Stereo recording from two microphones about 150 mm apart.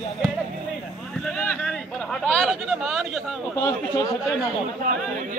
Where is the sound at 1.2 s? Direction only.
5° left (ahead or behind).